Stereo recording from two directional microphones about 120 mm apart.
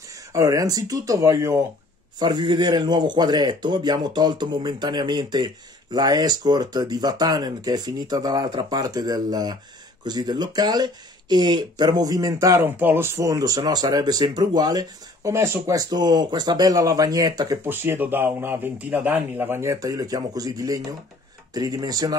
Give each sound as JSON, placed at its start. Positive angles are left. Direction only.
{"t": 0.3, "sound": "speech", "side_deg": -25}
{"t": 2.1, "sound": "speech", "side_deg": -35}
{"t": 17.6, "sound": "speech", "side_deg": -15}